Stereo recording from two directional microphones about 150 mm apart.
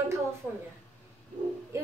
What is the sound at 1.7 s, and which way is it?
Music, 20° right (ahead or behind).